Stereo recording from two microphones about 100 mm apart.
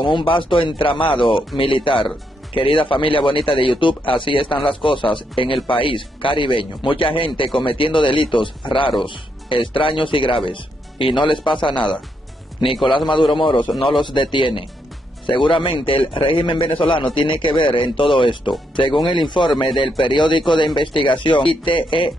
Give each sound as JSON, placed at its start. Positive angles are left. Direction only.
{"t": 0.0, "sound": "speech", "side_deg": 60}
{"t": 13.1, "sound": "speech", "side_deg": 55}